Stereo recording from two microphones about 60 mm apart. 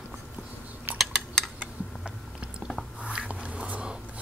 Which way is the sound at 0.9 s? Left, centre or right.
Centre.